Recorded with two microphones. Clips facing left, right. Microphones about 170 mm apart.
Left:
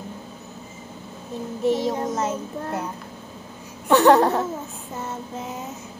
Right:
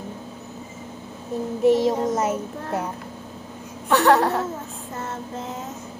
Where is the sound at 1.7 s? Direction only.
5° right (ahead or behind).